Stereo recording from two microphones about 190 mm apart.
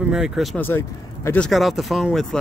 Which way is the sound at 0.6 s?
10° left (ahead or behind).